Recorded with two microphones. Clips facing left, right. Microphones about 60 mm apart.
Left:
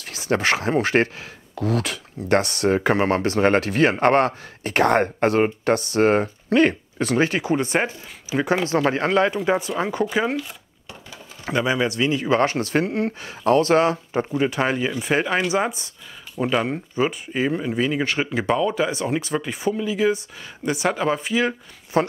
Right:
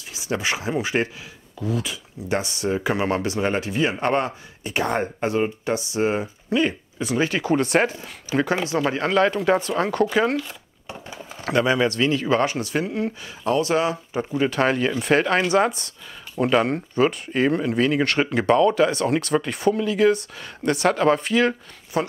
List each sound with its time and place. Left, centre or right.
0.0 s speech: left
1.5 s speech: left
2.8 s speech: left
7.2 s speech: left
7.6 s speech: centre
8.6 s speech: left
12.4 s speech: left
14.3 s speech: centre
21.9 s speech: left